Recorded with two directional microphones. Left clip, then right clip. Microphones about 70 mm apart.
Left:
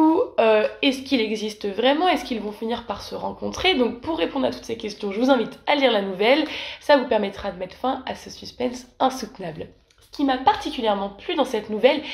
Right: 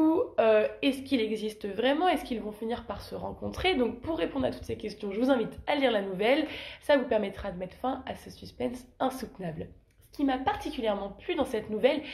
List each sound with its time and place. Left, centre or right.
0.0 s a woman's voice: left